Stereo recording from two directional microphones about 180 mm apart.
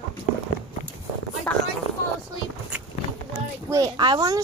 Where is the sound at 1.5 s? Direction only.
10° left (ahead or behind).